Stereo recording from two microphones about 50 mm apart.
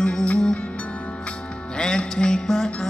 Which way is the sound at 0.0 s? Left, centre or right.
Centre.